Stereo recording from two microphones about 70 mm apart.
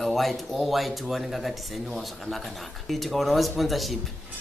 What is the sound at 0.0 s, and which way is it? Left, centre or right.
Speech, centre.